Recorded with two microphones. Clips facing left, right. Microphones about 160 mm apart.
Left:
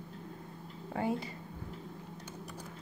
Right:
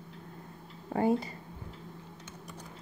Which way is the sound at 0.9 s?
40° right (ahead or behind).